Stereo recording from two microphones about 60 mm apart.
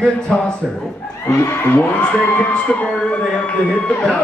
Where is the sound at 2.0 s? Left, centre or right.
Left.